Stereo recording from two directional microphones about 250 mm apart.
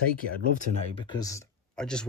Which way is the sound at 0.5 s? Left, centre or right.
Left.